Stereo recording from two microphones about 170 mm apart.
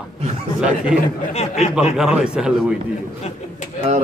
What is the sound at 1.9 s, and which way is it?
Speech, 5° right (ahead or behind).